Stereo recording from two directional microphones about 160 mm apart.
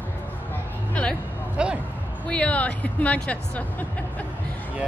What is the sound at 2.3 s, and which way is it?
Speech, 10° left (ahead or behind).